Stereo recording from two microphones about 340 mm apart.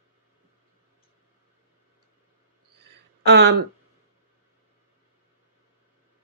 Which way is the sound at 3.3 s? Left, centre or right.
Right.